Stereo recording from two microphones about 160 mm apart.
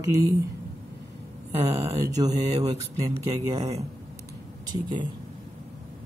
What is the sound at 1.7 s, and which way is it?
Speech, 20° right (ahead or behind).